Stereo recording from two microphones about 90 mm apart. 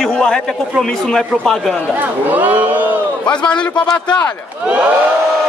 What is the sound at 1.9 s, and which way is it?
Speech, 20° right (ahead or behind).